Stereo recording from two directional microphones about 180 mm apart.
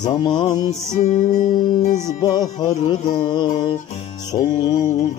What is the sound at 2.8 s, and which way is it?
Music, 30° left (ahead or behind).